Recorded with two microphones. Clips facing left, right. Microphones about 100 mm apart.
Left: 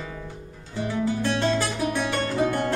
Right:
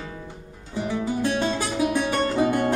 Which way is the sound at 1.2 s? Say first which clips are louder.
Even; 15° right (ahead or behind).